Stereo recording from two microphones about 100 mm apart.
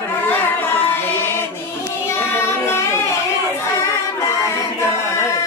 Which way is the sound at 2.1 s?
25° left (ahead or behind).